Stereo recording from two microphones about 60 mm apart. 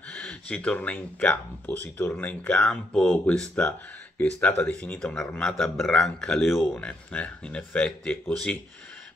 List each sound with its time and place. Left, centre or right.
0.1 s speech: left
4.9 s a man's voice: centre
6.6 s speech: left